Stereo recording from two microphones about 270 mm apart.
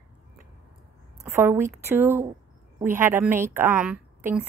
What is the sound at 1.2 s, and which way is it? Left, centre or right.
A woman's voice, centre.